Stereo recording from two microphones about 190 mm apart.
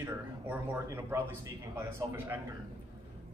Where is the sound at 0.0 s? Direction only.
10° right (ahead or behind).